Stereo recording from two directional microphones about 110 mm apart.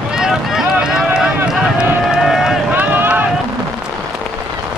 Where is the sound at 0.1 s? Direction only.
5° right (ahead or behind).